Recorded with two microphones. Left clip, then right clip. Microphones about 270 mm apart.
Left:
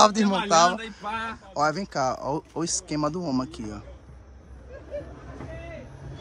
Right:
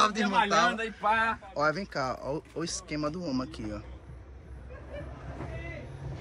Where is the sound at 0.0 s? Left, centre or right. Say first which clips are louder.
Left 5 dB; centre.